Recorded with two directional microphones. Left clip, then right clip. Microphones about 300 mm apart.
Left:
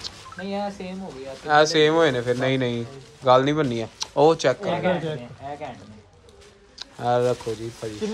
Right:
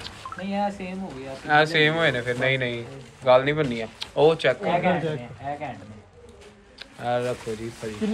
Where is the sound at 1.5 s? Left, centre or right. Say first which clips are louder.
Left 2 dB; centre.